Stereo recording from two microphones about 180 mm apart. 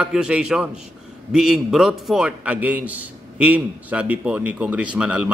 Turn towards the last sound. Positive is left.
turn(degrees=-5)  # may be behind; listen again after turning